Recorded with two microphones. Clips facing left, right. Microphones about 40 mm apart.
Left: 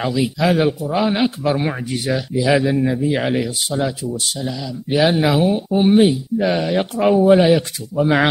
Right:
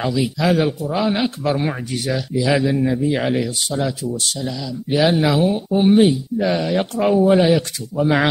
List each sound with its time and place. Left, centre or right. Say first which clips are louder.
0.0 s speech: left 1 dB; centre